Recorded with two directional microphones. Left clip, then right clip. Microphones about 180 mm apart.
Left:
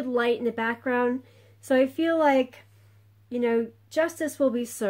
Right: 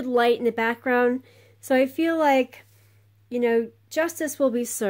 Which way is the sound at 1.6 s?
30° right (ahead or behind).